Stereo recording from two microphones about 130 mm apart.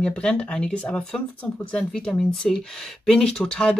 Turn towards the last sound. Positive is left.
turn(degrees=5)  # may be behind; listen again after turning